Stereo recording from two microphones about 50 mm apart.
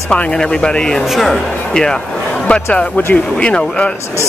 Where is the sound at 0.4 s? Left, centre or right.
Centre.